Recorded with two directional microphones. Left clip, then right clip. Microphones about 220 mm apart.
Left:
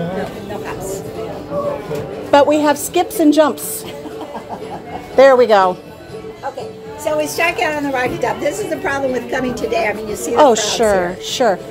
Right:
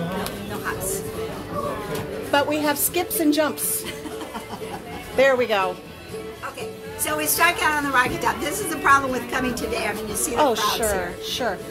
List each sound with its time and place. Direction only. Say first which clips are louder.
2.3 s a woman's voice: left 10 dB; 30° left (ahead or behind)
5.1 s a woman's voice: left 10 dB; 30° left (ahead or behind)
7.2 s a woman's voice: left 3 dB; centre (ahead or behind)
10.3 s a woman's voice: left 9 dB; 30° left (ahead or behind)